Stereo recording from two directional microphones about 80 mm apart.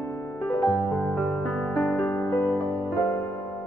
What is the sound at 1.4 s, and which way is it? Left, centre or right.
Music, centre.